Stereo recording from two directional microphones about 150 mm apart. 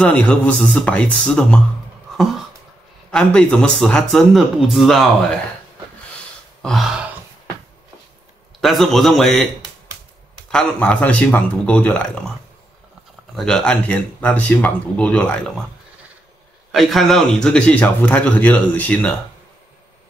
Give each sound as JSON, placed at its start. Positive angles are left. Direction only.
{"t": 0.0, "sound": "speech", "side_deg": 10}
{"t": 2.1, "sound": "a sound", "side_deg": 0}
{"t": 3.1, "sound": "speech", "side_deg": 5}
{"t": 6.6, "sound": "grunt", "side_deg": 0}
{"t": 8.5, "sound": "speech", "side_deg": 0}
{"t": 10.5, "sound": "speech", "side_deg": 5}
{"t": 13.4, "sound": "speech", "side_deg": 5}
{"t": 16.7, "sound": "speech", "side_deg": 0}